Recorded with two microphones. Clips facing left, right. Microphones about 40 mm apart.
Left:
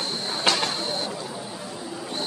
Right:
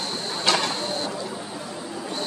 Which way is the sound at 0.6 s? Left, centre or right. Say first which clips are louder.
Right 1 dB; left.